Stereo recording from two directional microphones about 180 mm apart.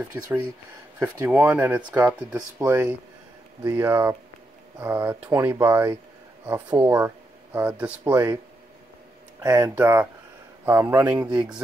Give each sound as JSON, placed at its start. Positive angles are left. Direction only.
{"t": 0.9, "sound": "speech", "side_deg": -10}
{"t": 9.4, "sound": "speech", "side_deg": -20}